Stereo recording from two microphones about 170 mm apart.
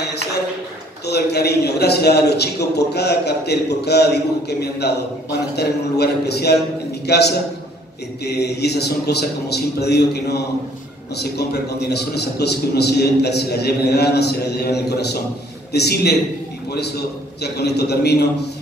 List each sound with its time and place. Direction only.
1.0 s a man's voice: 70° left (ahead or behind)
17.4 s a man's voice: 75° left (ahead or behind)